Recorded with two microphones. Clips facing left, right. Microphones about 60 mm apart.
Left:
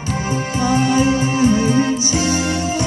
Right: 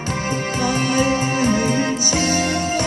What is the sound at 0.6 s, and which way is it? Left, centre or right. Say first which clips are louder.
Music: left 4 dB; right.